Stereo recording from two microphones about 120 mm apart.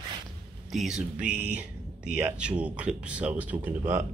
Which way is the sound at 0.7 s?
5° right (ahead or behind).